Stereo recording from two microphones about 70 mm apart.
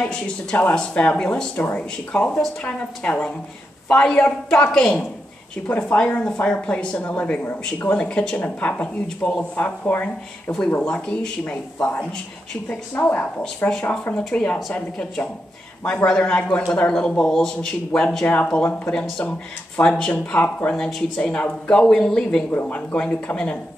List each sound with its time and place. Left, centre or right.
0.0 s speech: centre
5.7 s speech: left
12.6 s speech: left